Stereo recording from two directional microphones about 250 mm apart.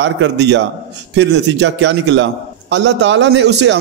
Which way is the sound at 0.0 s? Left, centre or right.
Right.